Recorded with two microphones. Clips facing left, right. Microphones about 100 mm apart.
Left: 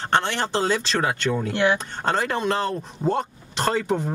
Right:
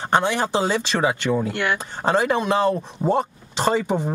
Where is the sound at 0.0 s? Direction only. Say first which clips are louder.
Right 3 dB; 15° right (ahead or behind).